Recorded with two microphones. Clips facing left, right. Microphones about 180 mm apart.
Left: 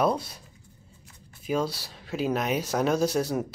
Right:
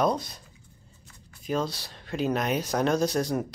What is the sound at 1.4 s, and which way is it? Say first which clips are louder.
Speech: left 1 dB; 5° left (ahead or behind).